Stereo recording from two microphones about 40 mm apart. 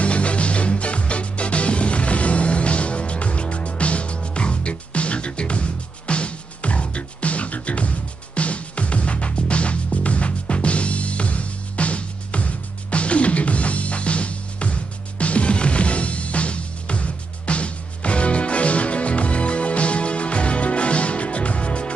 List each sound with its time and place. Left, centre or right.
0.0 s music: left